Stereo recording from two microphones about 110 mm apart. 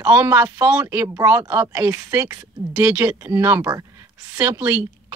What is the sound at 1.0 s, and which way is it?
Speech, 30° right (ahead or behind).